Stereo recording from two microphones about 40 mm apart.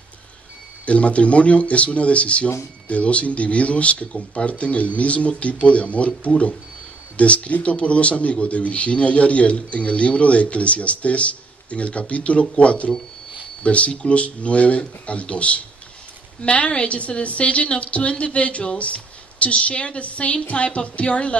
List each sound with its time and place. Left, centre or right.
0.8 s a man's voice: left